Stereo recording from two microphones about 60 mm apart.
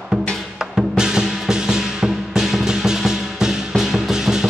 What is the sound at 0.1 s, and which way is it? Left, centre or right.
Music, centre.